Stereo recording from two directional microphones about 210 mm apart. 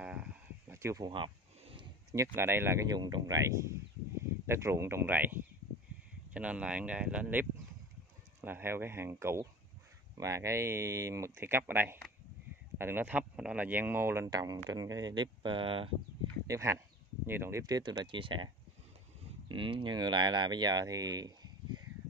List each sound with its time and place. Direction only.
0.0 s cattle: 5° right (ahead or behind); by 2.2 s 25° right (ahead or behind)
2.3 s speech: 10° right (ahead or behind)
16.4 s speech: 15° right (ahead or behind)
19.5 s speech: 25° right (ahead or behind)